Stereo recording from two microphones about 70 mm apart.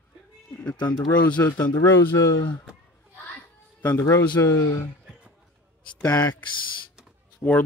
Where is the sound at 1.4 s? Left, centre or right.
Left.